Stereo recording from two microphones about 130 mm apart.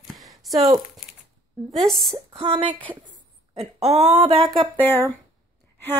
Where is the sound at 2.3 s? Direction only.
45° right (ahead or behind).